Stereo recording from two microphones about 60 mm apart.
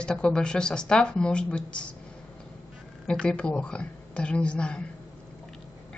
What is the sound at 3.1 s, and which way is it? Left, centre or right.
Speech, centre.